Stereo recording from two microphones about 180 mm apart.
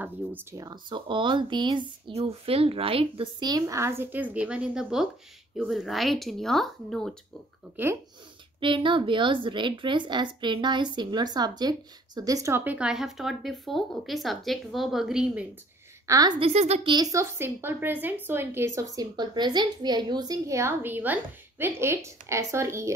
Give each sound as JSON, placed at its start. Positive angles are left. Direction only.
{"t": 0.0, "sound": "a woman's voice", "side_deg": -10}
{"t": 7.7, "sound": "a woman's voice", "side_deg": -15}
{"t": 8.5, "sound": "a woman's voice", "side_deg": -30}
{"t": 16.1, "sound": "a woman's voice", "side_deg": -20}